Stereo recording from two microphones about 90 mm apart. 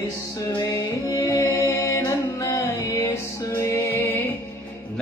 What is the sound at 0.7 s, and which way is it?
Music, 35° left (ahead or behind).